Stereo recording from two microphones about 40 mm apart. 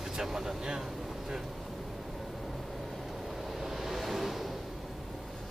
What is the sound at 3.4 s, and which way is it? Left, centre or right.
Vehicle, centre.